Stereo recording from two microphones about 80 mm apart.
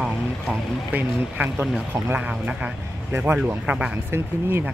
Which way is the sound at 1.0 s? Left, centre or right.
Right.